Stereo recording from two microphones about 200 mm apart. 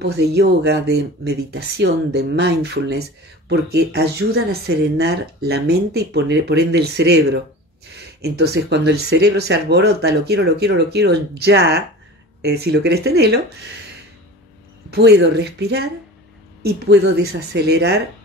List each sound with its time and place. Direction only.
0.0 s a woman's voice: 55° right (ahead or behind)
14.9 s a woman's voice: 55° right (ahead or behind)